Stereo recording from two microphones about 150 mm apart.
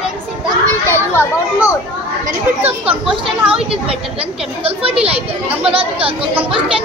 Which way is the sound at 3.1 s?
5° right (ahead or behind).